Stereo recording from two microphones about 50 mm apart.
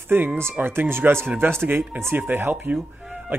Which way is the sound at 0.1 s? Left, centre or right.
Right.